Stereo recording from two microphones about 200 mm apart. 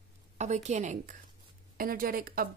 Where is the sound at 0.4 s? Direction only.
35° right (ahead or behind).